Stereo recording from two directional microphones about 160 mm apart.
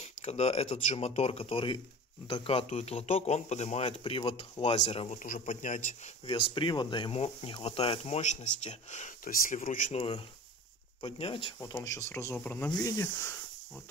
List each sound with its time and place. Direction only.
0.0 s speech: 40° left (ahead or behind)
5.2 s a man's voice: 55° left (ahead or behind)
6.2 s speech: 35° left (ahead or behind); by 10.0 s 55° left (ahead or behind)
11.0 s speech: 35° left (ahead or behind)
11.6 s speech: 20° left (ahead or behind)